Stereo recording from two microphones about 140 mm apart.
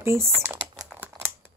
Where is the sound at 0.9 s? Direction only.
15° right (ahead or behind).